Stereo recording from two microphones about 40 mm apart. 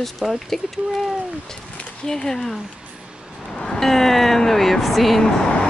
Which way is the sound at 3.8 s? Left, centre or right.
Centre.